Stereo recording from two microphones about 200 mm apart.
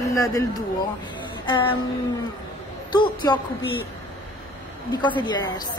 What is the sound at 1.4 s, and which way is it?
Music, 25° left (ahead or behind).